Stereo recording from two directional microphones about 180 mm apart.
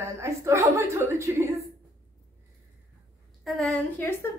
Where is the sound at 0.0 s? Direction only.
15° right (ahead or behind).